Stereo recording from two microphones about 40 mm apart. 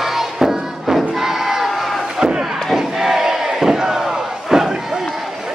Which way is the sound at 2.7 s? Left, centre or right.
Centre.